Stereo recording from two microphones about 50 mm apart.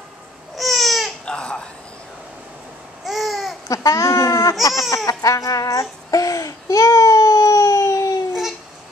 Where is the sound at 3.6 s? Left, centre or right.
Left.